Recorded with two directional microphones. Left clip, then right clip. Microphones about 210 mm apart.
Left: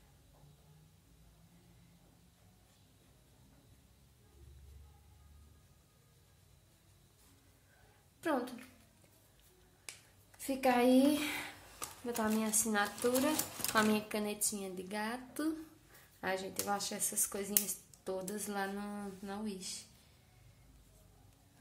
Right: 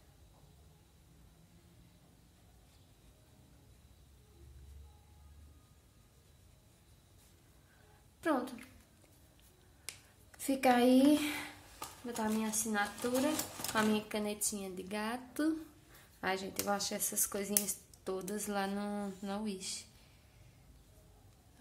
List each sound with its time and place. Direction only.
8.2 s a sound: 10° right (ahead or behind)
10.4 s a woman's voice: 25° right (ahead or behind)
11.1 s a woman's voice: 10° right (ahead or behind); by 13.7 s 15° left (ahead or behind)
13.7 s speech: centre (ahead or behind); by 19.8 s 15° right (ahead or behind)